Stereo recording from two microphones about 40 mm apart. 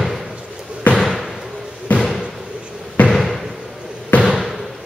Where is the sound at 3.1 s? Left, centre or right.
Centre.